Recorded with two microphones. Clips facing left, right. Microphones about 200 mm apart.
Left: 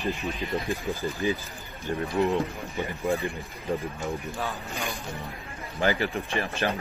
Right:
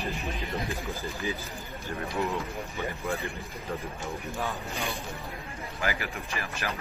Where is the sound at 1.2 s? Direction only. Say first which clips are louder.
Left 7 dB; 20° left (ahead or behind).